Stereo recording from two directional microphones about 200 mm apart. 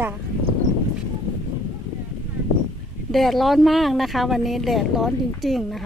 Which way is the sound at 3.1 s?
Centre (ahead or behind).